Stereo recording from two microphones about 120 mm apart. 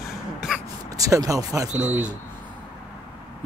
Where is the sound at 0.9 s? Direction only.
30° right (ahead or behind).